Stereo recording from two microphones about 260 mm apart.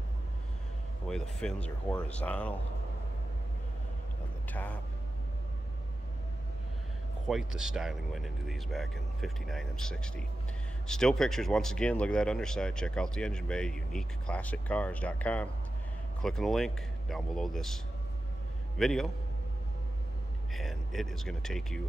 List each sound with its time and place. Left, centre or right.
1.0 s speech: centre
4.5 s speech: centre
7.2 s speech: centre
18.8 s speech: centre
20.5 s speech: centre